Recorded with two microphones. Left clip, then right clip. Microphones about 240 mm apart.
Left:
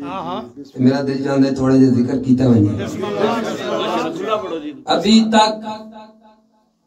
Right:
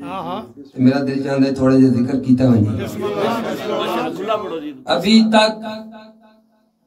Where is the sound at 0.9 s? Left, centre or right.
Right.